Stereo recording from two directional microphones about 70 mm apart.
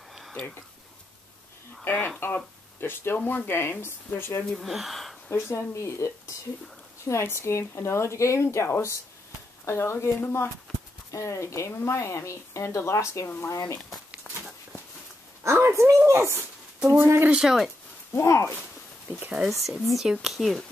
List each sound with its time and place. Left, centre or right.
1.9 s speech: left
4.6 s speech: centre
5.3 s speech: left
11.1 s speech: left
15.4 s a sound: right
16.1 s speech: right
17.3 s speech: centre
18.1 s speech: left
19.6 s speech: centre